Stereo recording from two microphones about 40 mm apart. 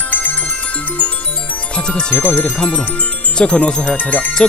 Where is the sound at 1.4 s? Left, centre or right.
Left.